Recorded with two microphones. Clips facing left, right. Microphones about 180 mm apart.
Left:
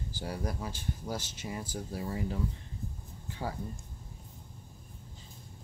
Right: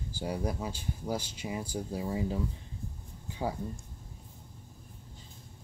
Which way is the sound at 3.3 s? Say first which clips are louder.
Right 4 dB; 15° right (ahead or behind).